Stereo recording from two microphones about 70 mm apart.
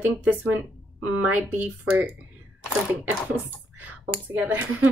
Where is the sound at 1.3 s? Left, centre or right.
Right.